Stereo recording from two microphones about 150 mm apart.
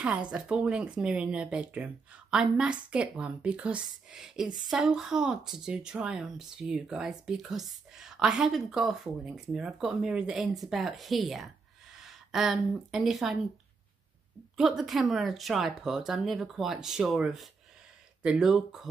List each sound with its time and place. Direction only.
0.0 s a woman's voice: 10° right (ahead or behind)
14.6 s speech: centre (ahead or behind)